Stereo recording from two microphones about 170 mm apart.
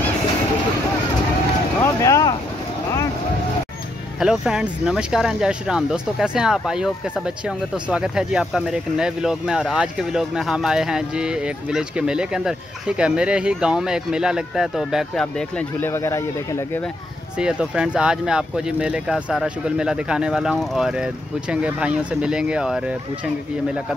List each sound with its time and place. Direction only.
1.8 s boat: 15° left (ahead or behind)
4.2 s speech: 5° right (ahead or behind); by 16.8 s 15° left (ahead or behind)
17.4 s speech: 5° right (ahead or behind)